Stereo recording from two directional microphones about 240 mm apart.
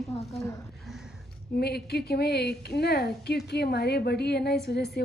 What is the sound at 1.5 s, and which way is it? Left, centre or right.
A woman's voice, left.